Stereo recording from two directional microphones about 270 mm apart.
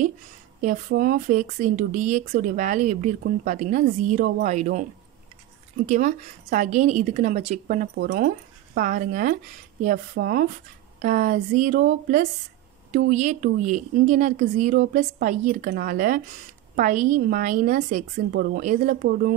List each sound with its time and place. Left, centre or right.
0.6 s speech: right
5.9 s speech: right